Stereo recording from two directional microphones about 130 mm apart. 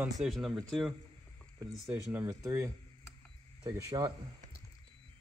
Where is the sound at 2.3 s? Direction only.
25° right (ahead or behind).